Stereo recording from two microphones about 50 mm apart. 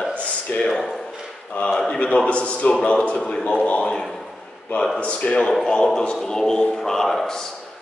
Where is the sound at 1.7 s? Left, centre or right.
Centre.